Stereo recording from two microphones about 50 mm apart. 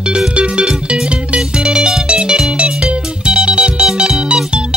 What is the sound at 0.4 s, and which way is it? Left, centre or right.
Music, right.